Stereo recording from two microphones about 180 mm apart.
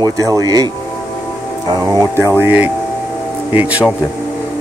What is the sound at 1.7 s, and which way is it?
Speech, 20° right (ahead or behind).